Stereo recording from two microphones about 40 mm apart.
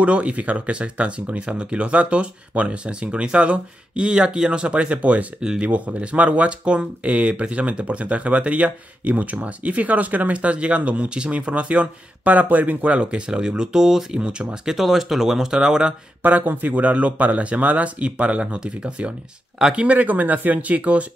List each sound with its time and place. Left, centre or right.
0.0 s speech: right
12.9 s speech: right
16.2 s speech: right